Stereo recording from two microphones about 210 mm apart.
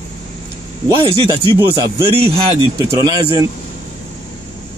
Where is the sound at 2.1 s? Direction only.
30° right (ahead or behind).